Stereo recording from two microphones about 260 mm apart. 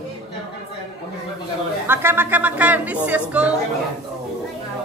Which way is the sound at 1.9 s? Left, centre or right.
Centre.